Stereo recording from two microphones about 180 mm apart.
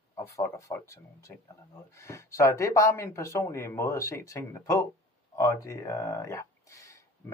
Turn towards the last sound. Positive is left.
turn(degrees=15)  # may be behind; listen again after turning